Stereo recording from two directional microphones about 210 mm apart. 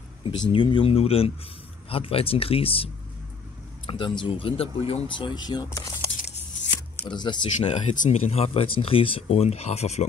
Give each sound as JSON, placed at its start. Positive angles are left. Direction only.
{"t": 0.5, "sound": "speech", "side_deg": 25}
{"t": 7.7, "sound": "speech", "side_deg": 35}